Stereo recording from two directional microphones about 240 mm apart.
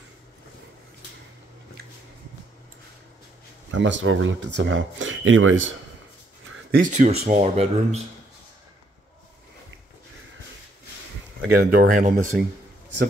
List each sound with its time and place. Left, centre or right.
3.7 s speech: right
6.4 s speech: right
11.5 s speech: right